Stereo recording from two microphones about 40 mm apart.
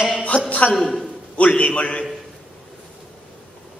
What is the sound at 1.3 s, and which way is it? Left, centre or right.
Speech, left.